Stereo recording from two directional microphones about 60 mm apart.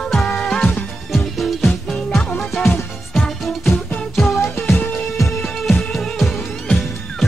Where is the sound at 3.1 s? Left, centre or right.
Centre.